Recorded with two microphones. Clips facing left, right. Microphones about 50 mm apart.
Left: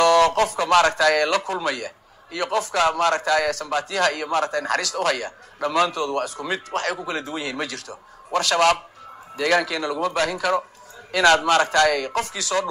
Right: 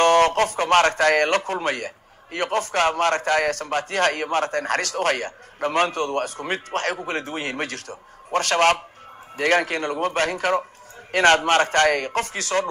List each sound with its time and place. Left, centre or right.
0.0 s speech: right